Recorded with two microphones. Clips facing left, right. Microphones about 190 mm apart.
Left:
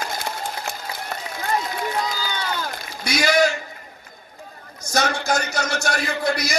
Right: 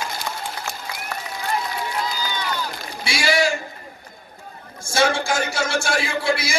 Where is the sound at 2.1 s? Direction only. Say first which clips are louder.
Even; 50° left (ahead or behind).